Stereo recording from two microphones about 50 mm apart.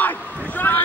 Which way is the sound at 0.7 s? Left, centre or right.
Left.